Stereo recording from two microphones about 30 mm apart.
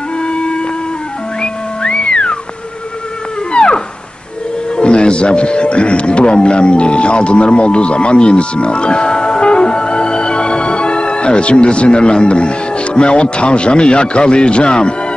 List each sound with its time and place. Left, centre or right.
0.2 s music: left
1.4 s whistling: left
3.5 s whale vocalization: left
4.7 s speech: left